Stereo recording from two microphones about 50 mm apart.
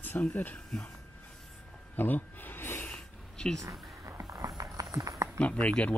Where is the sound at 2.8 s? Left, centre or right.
Centre.